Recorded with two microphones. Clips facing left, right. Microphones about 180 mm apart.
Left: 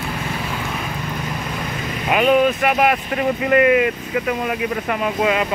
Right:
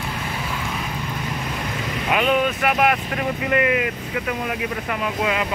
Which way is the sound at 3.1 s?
10° left (ahead or behind).